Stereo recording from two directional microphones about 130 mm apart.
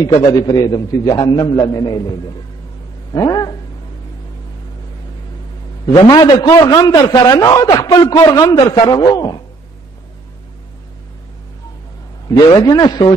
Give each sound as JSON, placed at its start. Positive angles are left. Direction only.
{"t": 0.0, "sound": "a man's voice", "side_deg": 30}
{"t": 1.2, "sound": "a man's voice", "side_deg": 40}
{"t": 5.9, "sound": "a man's voice", "side_deg": 35}
{"t": 12.4, "sound": "a man's voice", "side_deg": 30}